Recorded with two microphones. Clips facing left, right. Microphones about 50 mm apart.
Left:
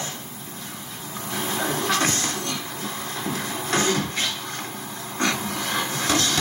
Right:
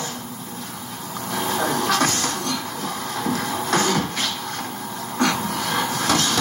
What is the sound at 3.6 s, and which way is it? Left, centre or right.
Music, left.